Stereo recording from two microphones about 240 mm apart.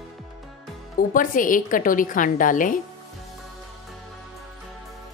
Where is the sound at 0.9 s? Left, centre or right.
Left.